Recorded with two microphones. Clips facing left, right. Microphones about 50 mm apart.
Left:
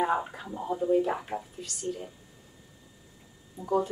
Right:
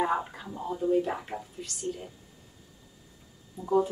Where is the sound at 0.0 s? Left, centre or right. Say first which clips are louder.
Left 1 dB; centre.